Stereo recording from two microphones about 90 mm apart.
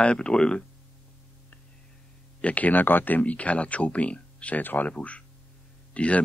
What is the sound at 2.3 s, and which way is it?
Speech, 15° left (ahead or behind).